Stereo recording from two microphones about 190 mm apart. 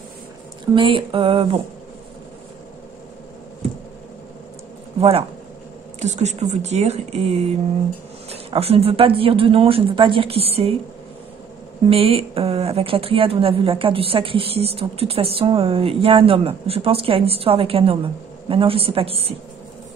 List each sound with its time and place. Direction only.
0.7 s a woman's voice: 25° right (ahead or behind)
5.9 s a woman's voice: 35° right (ahead or behind)
11.9 s a woman's voice: 30° right (ahead or behind)